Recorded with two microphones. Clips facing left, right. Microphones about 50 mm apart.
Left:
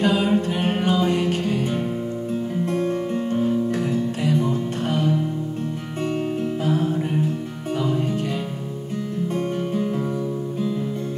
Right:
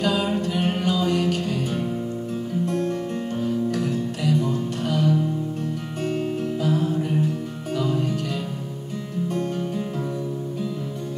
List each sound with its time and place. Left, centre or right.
0.0 s music: left
2.6 s music: left
6.6 s music: left
9.3 s music: left